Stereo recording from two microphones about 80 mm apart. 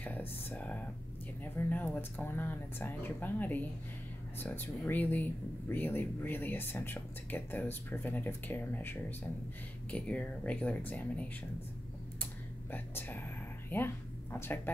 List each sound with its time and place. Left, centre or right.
0.0 s speech: left
12.7 s speech: left